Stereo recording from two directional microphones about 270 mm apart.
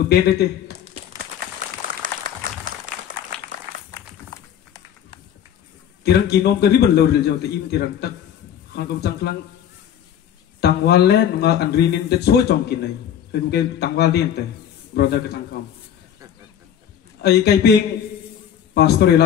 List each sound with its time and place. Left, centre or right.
0.1 s speech: left
2.0 s applause: right
3.9 s run: centre
6.0 s speech: left
10.6 s speech: left
17.2 s speech: left
18.8 s speech: left